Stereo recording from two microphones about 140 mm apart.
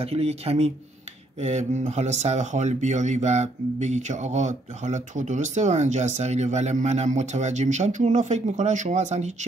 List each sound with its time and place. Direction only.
0.0 s speech: 45° right (ahead or behind)